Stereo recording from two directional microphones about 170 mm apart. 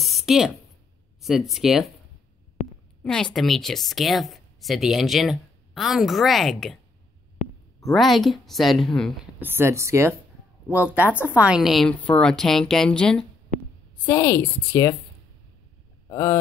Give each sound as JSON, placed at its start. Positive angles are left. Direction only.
{"t": 0.0, "sound": "a sound", "side_deg": 0}
{"t": 1.2, "sound": "a woman's voice", "side_deg": 0}
{"t": 3.0, "sound": "a woman's voice", "side_deg": 5}
{"t": 7.4, "sound": "a sound", "side_deg": 40}
{"t": 7.8, "sound": "a woman's voice", "side_deg": 0}
{"t": 9.4, "sound": "a woman's voice", "side_deg": -15}
{"t": 14.0, "sound": "a woman's voice", "side_deg": 15}
{"t": 16.1, "sound": "speech", "side_deg": 20}